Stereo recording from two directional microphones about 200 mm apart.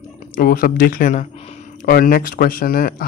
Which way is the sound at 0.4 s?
45° left (ahead or behind).